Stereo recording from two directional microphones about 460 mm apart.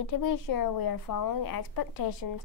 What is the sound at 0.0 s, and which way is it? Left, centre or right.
Speech, left.